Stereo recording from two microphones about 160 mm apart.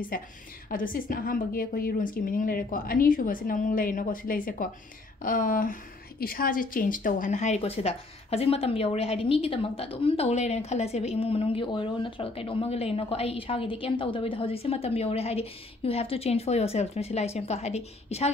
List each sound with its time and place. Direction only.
0.1 s a woman's voice: 65° left (ahead or behind); by 18.3 s 40° left (ahead or behind)